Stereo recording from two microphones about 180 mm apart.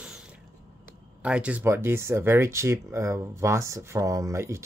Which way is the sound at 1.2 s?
5° right (ahead or behind).